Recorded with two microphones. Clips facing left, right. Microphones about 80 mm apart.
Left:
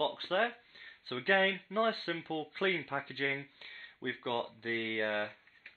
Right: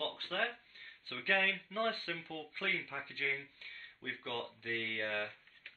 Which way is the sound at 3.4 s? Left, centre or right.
Left.